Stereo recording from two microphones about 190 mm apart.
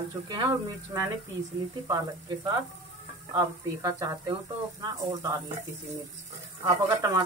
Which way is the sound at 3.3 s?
20° right (ahead or behind).